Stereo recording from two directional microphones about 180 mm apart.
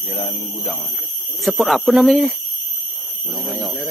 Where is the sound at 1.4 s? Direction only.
Centre (ahead or behind).